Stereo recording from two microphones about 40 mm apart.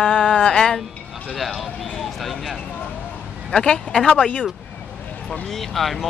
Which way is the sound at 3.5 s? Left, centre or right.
Left.